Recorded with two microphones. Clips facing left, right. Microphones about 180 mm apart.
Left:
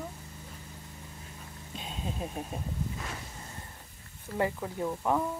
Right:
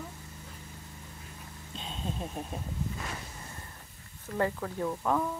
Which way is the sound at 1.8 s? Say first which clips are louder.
Even; 5° left (ahead or behind).